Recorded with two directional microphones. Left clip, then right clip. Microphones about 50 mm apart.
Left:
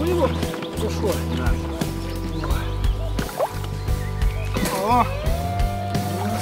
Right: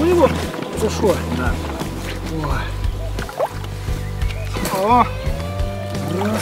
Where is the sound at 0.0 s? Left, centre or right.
Right.